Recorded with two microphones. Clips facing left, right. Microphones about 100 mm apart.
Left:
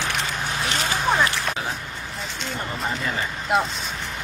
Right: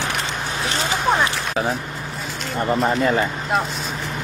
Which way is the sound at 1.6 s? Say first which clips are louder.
Right 7 dB; 50° right (ahead or behind).